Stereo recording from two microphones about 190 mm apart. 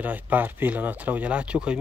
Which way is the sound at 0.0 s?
10° right (ahead or behind).